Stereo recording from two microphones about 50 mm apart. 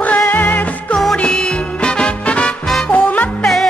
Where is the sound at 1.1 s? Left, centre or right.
Centre.